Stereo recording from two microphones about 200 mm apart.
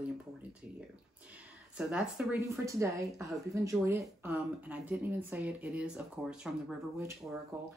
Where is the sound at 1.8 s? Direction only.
5° right (ahead or behind).